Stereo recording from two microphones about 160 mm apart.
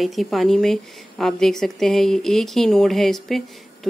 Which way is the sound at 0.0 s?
Centre (ahead or behind).